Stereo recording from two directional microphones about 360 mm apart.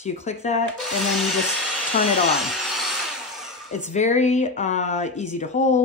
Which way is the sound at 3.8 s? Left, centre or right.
Centre.